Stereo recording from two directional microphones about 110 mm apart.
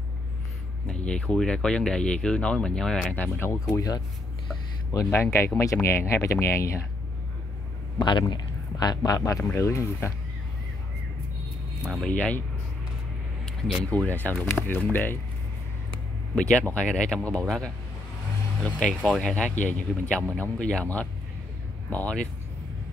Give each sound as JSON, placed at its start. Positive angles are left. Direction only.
{"t": 0.8, "sound": "speech", "side_deg": 10}
{"t": 3.7, "sound": "speech", "side_deg": 35}
{"t": 8.0, "sound": "speech", "side_deg": 40}
{"t": 11.8, "sound": "speech", "side_deg": 0}
{"t": 12.1, "sound": "speech", "side_deg": 15}
{"t": 13.9, "sound": "speech", "side_deg": 15}
{"t": 16.3, "sound": "speech", "side_deg": 10}